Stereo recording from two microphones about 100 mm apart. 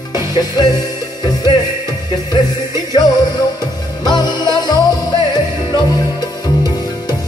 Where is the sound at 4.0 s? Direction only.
45° left (ahead or behind).